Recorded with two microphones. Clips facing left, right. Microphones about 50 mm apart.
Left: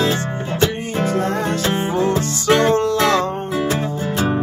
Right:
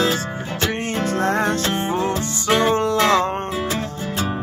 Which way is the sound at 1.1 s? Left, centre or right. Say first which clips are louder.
Right 2 dB; right.